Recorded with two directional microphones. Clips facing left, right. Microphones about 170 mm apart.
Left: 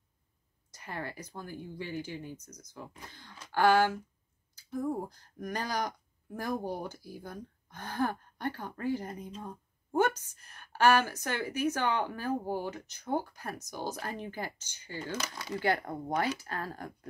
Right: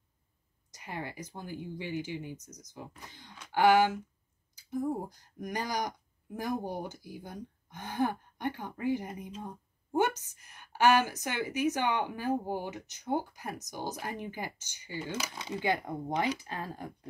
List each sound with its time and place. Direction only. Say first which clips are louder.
0.7 s speech: even; 15° right (ahead or behind)
9.4 s a sound: right 1 dB; 15° right (ahead or behind)
10.2 s speech: even; 15° right (ahead or behind)